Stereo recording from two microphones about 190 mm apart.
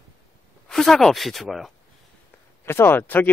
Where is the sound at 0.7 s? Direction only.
Centre (ahead or behind).